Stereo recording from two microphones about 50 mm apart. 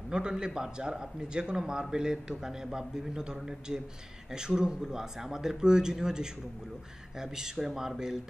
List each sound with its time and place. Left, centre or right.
0.1 s a man's voice: centre